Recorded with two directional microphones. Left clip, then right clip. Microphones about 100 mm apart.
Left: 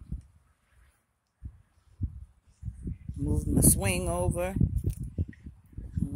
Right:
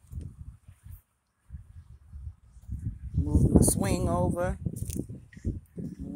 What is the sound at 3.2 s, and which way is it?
Speech, 25° left (ahead or behind).